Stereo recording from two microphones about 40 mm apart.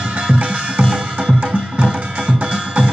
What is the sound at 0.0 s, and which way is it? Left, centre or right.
Music, right.